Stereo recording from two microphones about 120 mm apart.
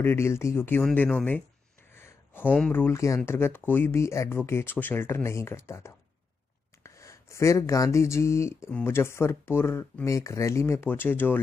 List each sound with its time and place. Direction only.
0.0 s speech: 20° left (ahead or behind)